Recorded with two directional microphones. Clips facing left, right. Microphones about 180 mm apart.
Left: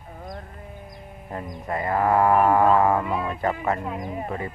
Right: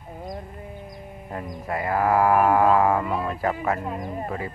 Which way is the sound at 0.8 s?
Centre (ahead or behind).